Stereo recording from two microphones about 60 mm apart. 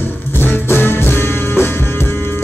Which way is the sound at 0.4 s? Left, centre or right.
Left.